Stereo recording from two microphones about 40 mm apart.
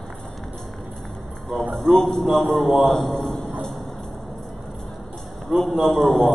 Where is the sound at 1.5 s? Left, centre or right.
Centre.